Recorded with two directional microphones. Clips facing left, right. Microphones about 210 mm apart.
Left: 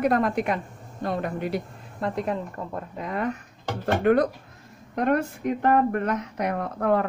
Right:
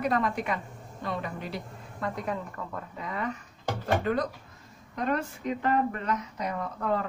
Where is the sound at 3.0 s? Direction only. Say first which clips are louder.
Left 6 dB; 55° left (ahead or behind).